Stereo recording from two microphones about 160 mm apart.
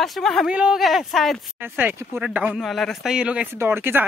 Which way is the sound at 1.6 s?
15° right (ahead or behind).